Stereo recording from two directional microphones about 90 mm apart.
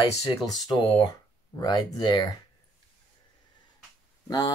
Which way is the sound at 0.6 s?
55° left (ahead or behind).